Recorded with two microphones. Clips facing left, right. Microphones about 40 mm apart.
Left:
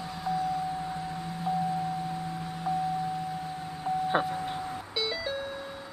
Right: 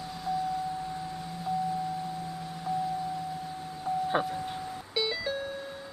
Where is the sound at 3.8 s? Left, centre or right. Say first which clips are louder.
Left 1 dB; centre.